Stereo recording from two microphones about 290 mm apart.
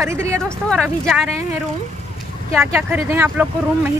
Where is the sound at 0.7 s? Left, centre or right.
Centre.